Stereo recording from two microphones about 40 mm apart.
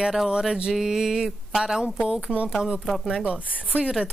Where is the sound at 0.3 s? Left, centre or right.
Centre.